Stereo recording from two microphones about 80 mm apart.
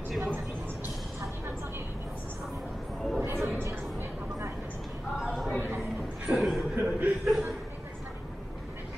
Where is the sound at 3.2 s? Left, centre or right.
Right.